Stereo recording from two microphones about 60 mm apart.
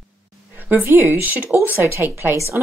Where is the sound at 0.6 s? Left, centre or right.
Right.